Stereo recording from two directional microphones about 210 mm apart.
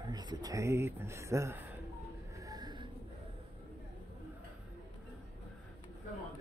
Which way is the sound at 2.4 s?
20° right (ahead or behind).